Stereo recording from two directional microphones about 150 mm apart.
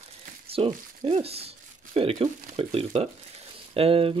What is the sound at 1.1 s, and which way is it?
Speech, 40° right (ahead or behind).